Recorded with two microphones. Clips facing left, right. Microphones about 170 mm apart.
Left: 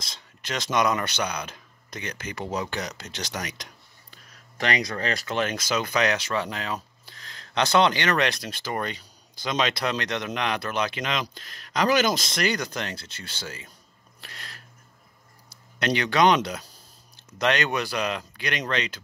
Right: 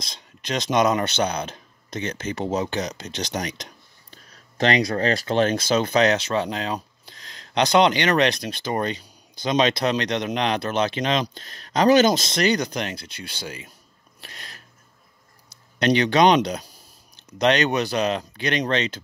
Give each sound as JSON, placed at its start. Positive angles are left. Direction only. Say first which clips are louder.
{"t": 0.0, "sound": "speech", "louder": "right 4 dB", "side_deg": -20}
{"t": 14.2, "sound": "sneeze", "louder": "right 1 dB", "side_deg": -20}
{"t": 15.8, "sound": "speech", "louder": "right 4 dB", "side_deg": -20}